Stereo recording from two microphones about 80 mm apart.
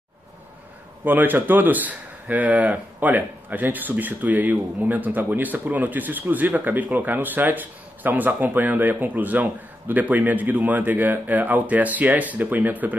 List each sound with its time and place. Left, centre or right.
1.0 s speech: right